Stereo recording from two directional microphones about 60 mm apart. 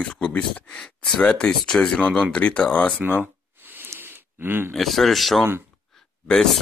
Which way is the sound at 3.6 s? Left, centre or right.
Right.